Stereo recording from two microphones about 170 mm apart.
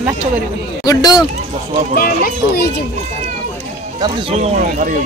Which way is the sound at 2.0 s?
60° left (ahead or behind).